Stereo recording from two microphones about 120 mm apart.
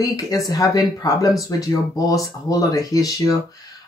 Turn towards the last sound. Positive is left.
turn(degrees=30)  # may be behind; listen again after turning